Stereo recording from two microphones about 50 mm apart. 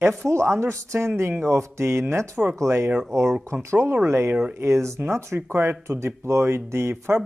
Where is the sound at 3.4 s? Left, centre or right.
Right.